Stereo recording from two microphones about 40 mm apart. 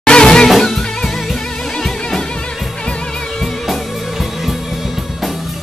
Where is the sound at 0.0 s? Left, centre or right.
Left.